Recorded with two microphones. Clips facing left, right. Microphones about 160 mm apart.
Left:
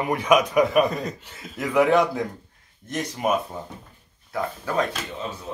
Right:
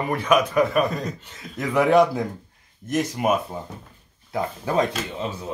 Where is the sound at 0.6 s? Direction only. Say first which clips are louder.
Left 2 dB; centre (ahead or behind).